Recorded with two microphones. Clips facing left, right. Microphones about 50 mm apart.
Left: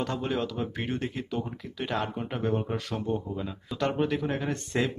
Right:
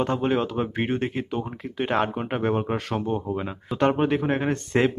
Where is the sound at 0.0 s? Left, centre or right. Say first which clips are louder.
Right 6 dB; right.